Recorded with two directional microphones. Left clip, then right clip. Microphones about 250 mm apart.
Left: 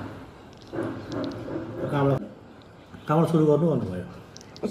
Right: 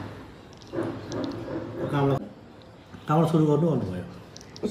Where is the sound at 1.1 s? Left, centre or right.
Centre.